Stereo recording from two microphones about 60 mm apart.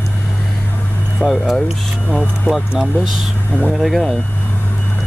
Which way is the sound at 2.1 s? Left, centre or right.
Centre.